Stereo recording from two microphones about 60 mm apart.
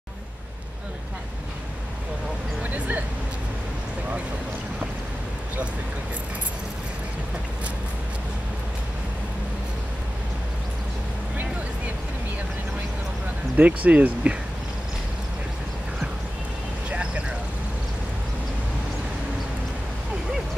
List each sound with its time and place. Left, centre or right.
2.6 s vehicle: right
13.6 s speech: right
16.9 s vehicle: centre